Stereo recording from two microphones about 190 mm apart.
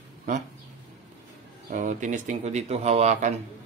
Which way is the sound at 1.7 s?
40° right (ahead or behind).